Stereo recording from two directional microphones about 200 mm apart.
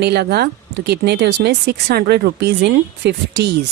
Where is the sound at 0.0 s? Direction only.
55° right (ahead or behind).